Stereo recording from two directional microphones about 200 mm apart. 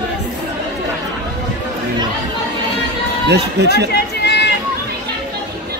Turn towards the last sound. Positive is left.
turn(degrees=55)  # may be behind; listen again after turning